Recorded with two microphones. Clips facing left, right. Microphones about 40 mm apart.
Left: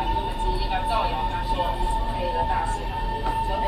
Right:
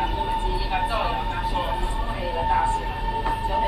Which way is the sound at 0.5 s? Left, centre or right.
Centre.